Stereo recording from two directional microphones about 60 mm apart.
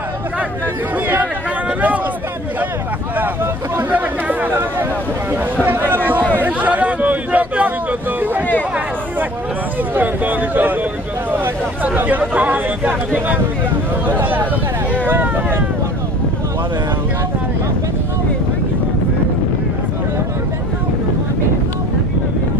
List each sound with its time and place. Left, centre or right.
3.9 s speech: right
6.3 s a sound: right
9.9 s speech: right